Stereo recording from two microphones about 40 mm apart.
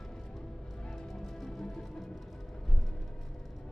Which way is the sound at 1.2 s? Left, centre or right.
Centre.